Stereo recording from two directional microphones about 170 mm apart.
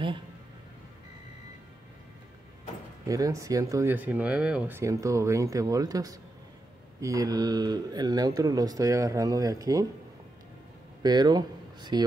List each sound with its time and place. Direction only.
3.1 s speech: 20° right (ahead or behind)
11.0 s speech: 25° right (ahead or behind)